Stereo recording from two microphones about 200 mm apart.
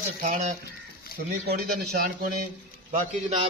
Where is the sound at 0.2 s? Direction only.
45° right (ahead or behind).